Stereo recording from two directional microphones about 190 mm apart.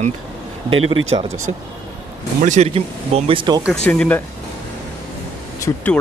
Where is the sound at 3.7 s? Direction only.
5° left (ahead or behind).